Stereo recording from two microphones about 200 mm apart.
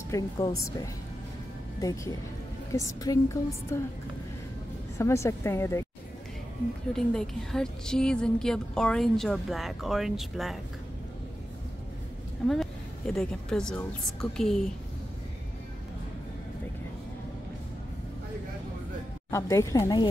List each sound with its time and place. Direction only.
0.1 s a woman's voice: 15° left (ahead or behind)
2.7 s a woman's voice: 15° left (ahead or behind)
4.9 s a woman's voice: 15° left (ahead or behind)
6.9 s a woman's voice: 5° left (ahead or behind)
12.4 s a woman's voice: centre (ahead or behind)
19.3 s a woman's voice: 15° left (ahead or behind)